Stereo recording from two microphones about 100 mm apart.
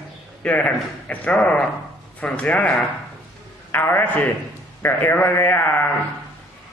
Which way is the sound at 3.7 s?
20° left (ahead or behind).